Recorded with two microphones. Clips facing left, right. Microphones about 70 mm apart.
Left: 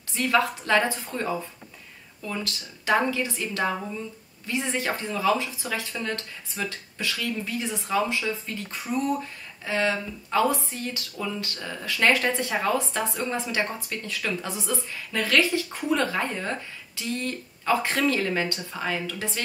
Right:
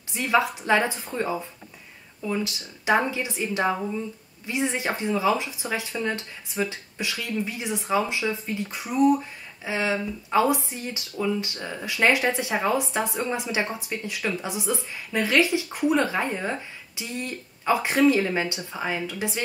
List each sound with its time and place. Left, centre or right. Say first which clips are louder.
0.1 s a woman's voice: right 1 dB; centre
2.2 s speech: right 4 dB; centre